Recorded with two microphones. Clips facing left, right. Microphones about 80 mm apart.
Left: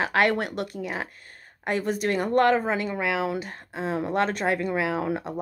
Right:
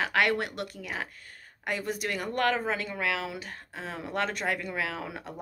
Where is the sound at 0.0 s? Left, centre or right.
Left.